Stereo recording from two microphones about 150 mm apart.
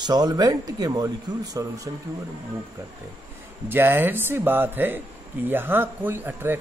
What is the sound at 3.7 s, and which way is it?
Speech, 15° right (ahead or behind).